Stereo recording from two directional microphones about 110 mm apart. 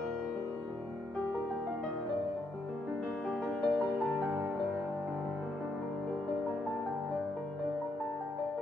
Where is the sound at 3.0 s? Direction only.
5° left (ahead or behind).